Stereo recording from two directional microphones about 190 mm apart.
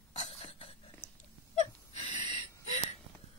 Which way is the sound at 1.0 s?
10° left (ahead or behind).